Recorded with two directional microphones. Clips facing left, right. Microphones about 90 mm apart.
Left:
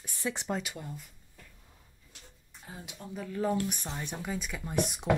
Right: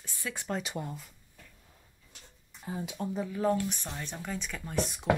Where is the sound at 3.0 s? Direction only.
90° right.